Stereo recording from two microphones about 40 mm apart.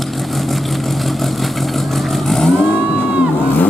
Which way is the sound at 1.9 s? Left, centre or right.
Centre.